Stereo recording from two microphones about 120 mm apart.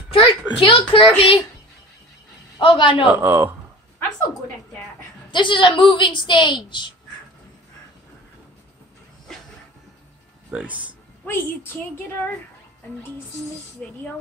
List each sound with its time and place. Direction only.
0.1 s a child's voice: 45° left (ahead or behind)
2.6 s a man's voice: 45° left (ahead or behind)
3.1 s speech: 15° right (ahead or behind)
5.3 s a woman's voice: 40° left (ahead or behind)
10.5 s speech: 10° right (ahead or behind)
11.2 s a woman's voice: 20° left (ahead or behind)
13.8 s a woman's voice: 10° left (ahead or behind)